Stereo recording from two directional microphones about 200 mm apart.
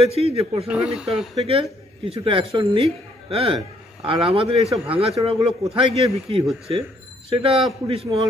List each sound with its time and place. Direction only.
0.0 s a man's voice: 30° right (ahead or behind)
0.7 s speech: 5° right (ahead or behind)
1.4 s a man's voice: 30° right (ahead or behind)